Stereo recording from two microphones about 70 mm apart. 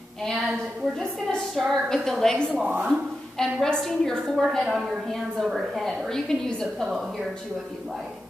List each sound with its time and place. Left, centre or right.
0.2 s a woman's voice: centre
2.9 s a sound: centre
3.6 s a woman's voice: centre